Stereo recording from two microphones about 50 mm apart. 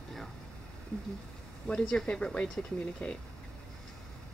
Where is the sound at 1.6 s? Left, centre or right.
Centre.